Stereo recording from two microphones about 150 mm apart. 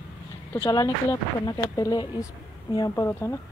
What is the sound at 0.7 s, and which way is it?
Speech, 25° left (ahead or behind).